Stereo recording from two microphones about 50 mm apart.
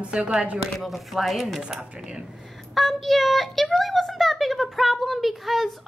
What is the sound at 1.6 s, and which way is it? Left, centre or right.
Speech, centre.